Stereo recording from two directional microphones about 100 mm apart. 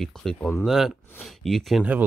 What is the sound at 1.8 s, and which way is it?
Speech, 15° right (ahead or behind).